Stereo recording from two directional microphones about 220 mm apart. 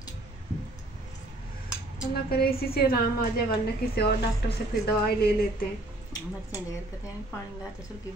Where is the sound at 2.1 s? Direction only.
45° left (ahead or behind).